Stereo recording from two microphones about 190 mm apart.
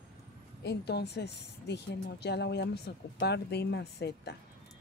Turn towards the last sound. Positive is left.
turn(degrees=60)  # may be behind; listen again after turning